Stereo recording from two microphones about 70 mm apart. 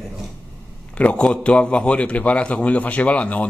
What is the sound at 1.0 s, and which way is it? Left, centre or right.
A man's voice, centre.